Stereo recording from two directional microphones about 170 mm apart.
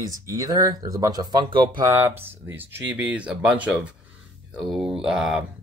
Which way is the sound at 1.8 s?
15° right (ahead or behind).